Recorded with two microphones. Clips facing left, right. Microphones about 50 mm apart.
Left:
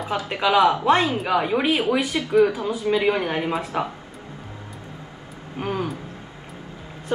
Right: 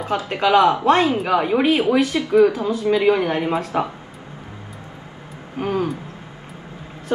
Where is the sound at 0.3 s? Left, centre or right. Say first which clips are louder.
Right 3 dB; centre.